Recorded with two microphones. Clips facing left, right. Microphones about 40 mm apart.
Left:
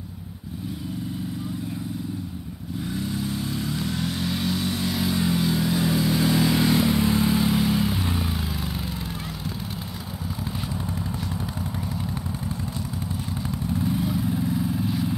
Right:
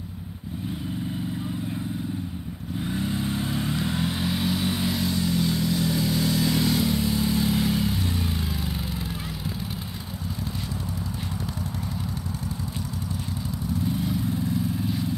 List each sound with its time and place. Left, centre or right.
2.8 s vehicle: right; by 4.9 s centre
4.9 s vehicle: centre; by 7.2 s left
7.2 s vehicle: centre
13.9 s vehicle: centre